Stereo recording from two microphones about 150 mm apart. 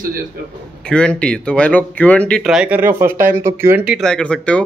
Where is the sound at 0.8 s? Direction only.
5° left (ahead or behind).